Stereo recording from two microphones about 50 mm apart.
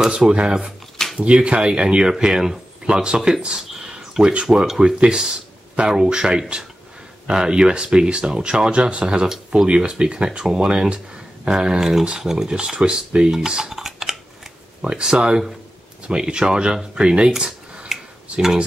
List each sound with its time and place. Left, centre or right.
0.0 s speech: centre
3.2 s speech: centre
3.4 s a sound: centre
4.2 s speech: right
4.5 s speech: centre
12.4 s speech: centre
13.4 s dishes: centre
14.8 s speech: centre
17.3 s a sound: centre